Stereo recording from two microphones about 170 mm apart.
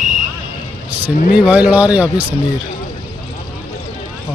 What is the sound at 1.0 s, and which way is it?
Speech, 10° right (ahead or behind).